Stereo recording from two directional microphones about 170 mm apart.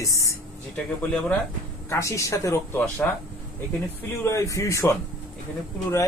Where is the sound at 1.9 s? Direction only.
15° left (ahead or behind).